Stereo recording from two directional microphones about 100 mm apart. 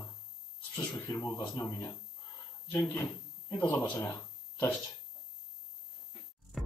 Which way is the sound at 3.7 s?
15° left (ahead or behind).